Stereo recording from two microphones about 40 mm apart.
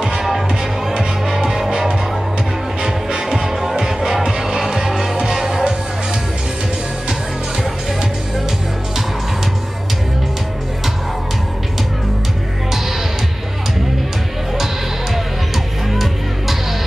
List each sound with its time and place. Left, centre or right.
0.0 s music: centre
3.3 s music: centre
15.5 s music: centre